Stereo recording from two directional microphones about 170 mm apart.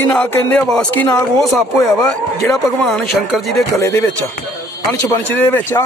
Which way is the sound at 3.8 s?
20° left (ahead or behind).